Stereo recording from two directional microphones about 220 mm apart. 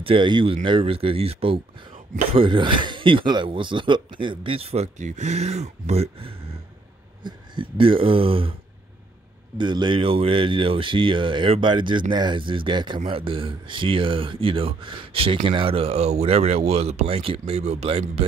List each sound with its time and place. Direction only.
0.0 s speech: 20° right (ahead or behind)
9.6 s speech: 20° right (ahead or behind)